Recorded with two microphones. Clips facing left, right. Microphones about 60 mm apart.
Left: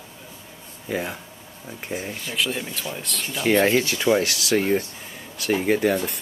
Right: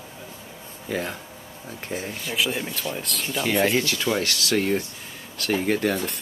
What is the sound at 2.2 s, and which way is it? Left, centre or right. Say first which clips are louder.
Speech: right 1 dB; centre.